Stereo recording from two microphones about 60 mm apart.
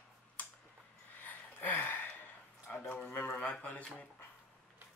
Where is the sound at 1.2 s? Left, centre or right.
Left.